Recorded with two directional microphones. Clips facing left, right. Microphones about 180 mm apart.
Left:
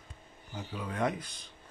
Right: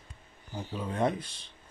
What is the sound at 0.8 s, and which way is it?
Speech, 30° right (ahead or behind).